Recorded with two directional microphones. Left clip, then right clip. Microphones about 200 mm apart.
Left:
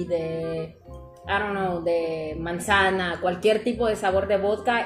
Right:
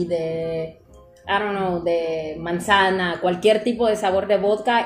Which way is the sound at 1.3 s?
25° right (ahead or behind).